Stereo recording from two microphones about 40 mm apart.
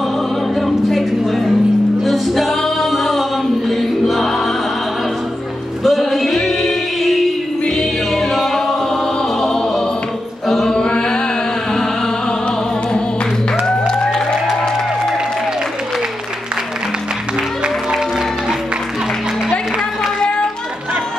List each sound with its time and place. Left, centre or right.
0.6 s a sound: centre
2.0 s music: centre
5.9 s male singing: centre
7.6 s choir: centre
9.4 s music: centre
10.7 s chant: left
13.7 s music: centre